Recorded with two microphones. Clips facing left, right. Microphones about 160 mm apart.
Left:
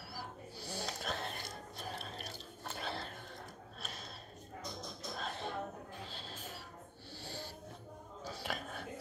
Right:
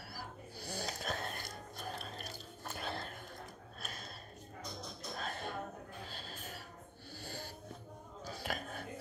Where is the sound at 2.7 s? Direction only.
50° right (ahead or behind).